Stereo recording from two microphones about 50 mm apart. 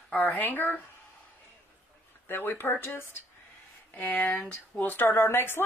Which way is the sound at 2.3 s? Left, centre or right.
Left.